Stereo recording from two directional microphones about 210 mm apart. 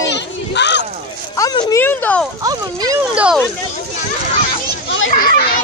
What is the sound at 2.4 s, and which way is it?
Speech, 15° right (ahead or behind).